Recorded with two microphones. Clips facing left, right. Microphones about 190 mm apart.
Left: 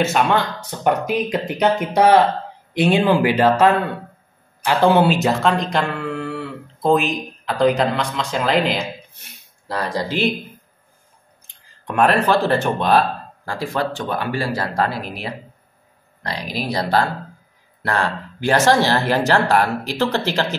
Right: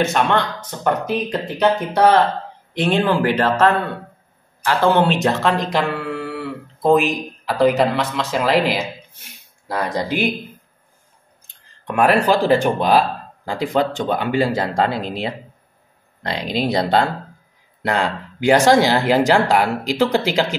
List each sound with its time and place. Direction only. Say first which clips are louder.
0.0 s speech: even; 5° left (ahead or behind)
9.7 s speech: right 2 dB; 15° right (ahead or behind)
11.8 s speech: right 1 dB; 5° right (ahead or behind)